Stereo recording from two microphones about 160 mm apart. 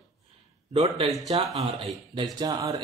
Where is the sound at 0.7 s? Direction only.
35° right (ahead or behind).